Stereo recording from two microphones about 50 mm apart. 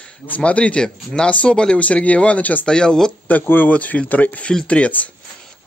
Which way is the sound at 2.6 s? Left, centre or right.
Centre.